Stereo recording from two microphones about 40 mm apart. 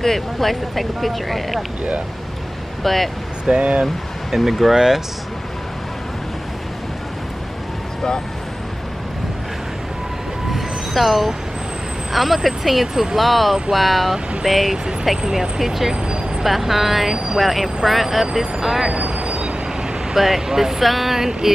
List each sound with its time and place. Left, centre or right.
0.0 s speech: centre
2.8 s speech: centre
3.4 s speech: right
3.8 s speech: centre
4.7 s speech: centre
10.5 s train: centre
12.1 s speech: centre
15.2 s speech: centre
18.9 s train: right
20.2 s speech: centre